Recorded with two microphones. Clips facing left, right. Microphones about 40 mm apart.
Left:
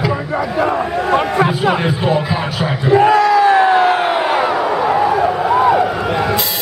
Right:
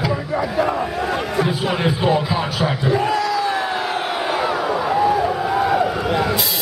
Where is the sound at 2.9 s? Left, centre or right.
Left.